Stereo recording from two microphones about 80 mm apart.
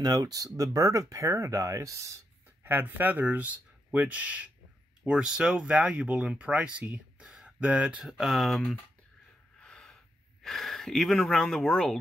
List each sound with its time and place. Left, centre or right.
0.0 s speech: right
2.6 s speech: right
8.0 s speech: centre
9.6 s snort: centre
10.4 s speech: centre